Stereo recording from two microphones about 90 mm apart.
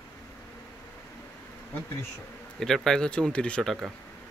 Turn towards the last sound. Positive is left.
turn(degrees=5)  # may be behind; listen again after turning